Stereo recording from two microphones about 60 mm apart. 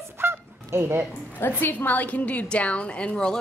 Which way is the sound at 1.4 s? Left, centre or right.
Left.